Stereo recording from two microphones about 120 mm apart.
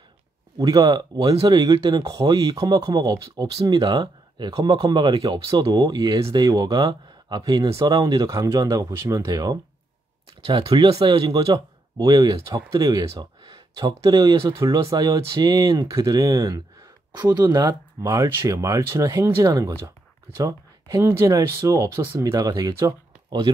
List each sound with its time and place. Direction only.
0.6 s speech: 30° right (ahead or behind)
11.0 s speech: 35° right (ahead or behind)